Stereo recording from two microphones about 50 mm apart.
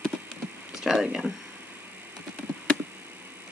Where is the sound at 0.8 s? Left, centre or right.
Centre.